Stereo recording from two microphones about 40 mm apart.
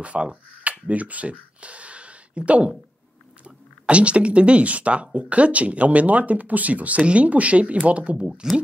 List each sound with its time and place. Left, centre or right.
0.0 s speech: right